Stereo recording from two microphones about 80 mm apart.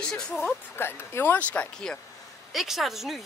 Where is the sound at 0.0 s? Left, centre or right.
Centre.